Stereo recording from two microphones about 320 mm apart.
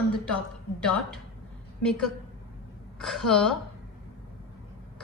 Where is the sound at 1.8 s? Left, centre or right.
Centre.